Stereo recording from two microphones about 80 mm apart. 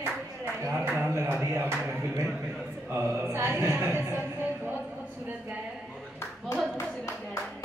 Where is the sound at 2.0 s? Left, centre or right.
Right.